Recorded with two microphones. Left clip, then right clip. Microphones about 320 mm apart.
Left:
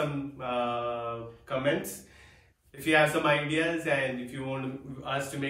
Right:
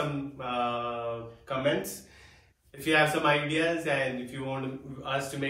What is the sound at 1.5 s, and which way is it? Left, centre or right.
A man's voice, centre.